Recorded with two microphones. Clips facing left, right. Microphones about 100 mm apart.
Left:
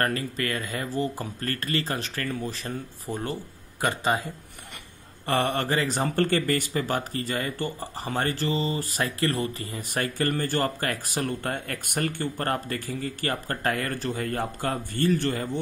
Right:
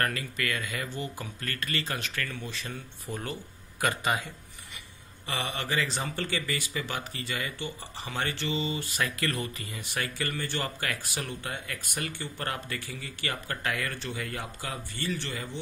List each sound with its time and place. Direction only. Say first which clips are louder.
0.0 s speech: left 4 dB; 35° left (ahead or behind)
5.2 s speech: left 9 dB; 55° left (ahead or behind)